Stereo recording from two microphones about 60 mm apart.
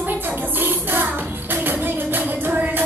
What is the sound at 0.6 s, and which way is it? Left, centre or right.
Music, right.